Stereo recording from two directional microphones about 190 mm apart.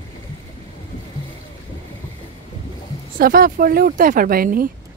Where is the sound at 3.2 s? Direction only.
50° right (ahead or behind).